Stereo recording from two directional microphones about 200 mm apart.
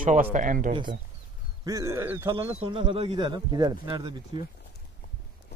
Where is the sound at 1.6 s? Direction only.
15° right (ahead or behind).